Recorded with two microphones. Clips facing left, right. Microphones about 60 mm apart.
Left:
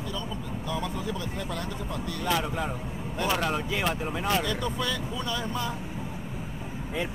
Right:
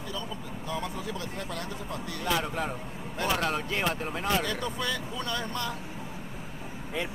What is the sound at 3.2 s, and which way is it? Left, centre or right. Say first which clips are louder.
Speech: left 1 dB; centre.